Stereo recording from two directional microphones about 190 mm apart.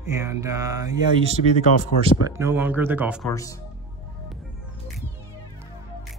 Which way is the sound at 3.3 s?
15° left (ahead or behind).